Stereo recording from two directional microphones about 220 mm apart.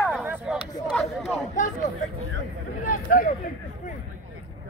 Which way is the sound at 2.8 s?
40° left (ahead or behind).